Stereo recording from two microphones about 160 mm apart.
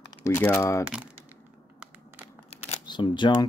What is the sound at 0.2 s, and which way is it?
Speech, 15° left (ahead or behind).